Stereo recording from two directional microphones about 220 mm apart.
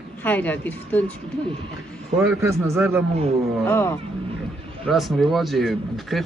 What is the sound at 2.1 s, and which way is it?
Speech, 15° right (ahead or behind).